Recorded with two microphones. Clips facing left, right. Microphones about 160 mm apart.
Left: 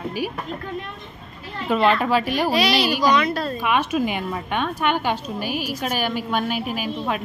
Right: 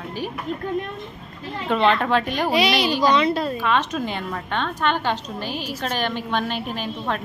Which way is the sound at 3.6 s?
10° left (ahead or behind).